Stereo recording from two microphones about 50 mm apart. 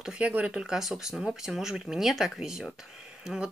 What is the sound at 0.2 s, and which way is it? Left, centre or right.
Speech, right.